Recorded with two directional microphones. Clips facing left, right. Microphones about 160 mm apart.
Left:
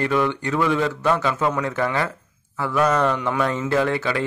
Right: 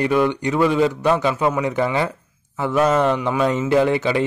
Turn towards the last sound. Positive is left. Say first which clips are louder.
# right 4 dB
turn(degrees=-20)  # may be behind; listen again after turning